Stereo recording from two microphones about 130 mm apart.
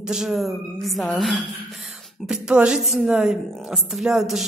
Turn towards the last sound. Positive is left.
turn(degrees=-5)  # may be behind; listen again after turning